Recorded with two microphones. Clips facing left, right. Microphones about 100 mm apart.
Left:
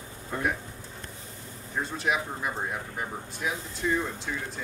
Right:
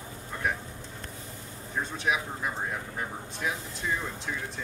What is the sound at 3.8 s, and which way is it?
Speech, centre (ahead or behind).